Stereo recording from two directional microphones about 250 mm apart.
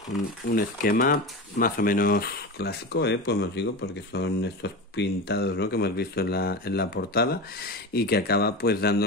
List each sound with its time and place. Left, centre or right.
0.5 s speech: left